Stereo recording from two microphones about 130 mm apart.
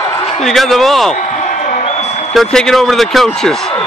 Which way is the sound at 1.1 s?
65° left (ahead or behind).